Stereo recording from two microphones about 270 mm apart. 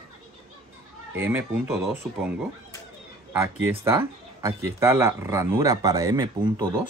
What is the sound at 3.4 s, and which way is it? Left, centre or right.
Speech, centre.